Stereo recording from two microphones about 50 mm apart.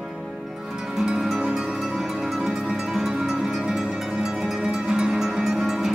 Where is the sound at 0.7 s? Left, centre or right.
Centre.